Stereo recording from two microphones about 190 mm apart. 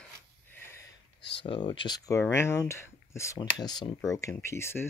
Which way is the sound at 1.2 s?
25° left (ahead or behind).